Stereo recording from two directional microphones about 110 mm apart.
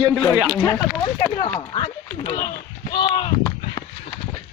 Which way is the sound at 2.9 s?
45° left (ahead or behind).